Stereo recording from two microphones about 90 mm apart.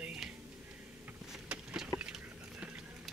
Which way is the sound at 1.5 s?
15° right (ahead or behind).